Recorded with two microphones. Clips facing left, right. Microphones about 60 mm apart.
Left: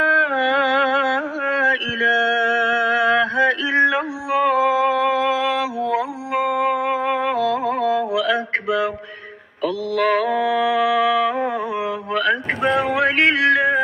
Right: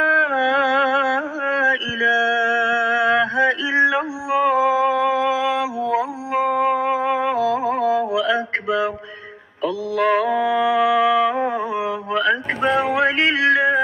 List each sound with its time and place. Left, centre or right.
0.0 s carnatic music: right
2.0 s mantra: centre
3.9 s music: centre
9.6 s mantra: right
12.7 s a sound: centre
13.1 s a sound: left
13.5 s music: right